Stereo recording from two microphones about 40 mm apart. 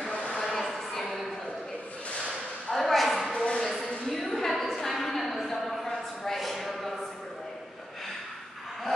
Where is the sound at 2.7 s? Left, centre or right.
Centre.